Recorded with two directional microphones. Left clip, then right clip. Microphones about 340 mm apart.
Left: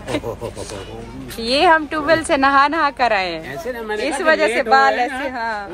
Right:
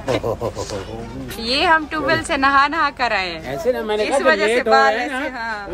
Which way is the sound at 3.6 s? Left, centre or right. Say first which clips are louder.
Right 8 dB; right.